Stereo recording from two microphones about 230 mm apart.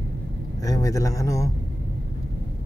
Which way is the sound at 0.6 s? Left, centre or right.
Centre.